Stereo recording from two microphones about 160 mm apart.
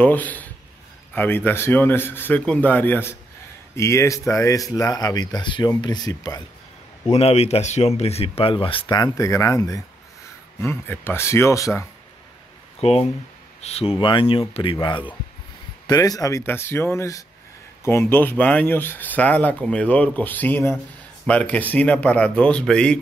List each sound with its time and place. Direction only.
0.0 s speech: 10° left (ahead or behind)
7.1 s speech: 40° left (ahead or behind); by 11.8 s 20° left (ahead or behind)
12.8 s speech: 40° left (ahead or behind); by 22.9 s 5° left (ahead or behind)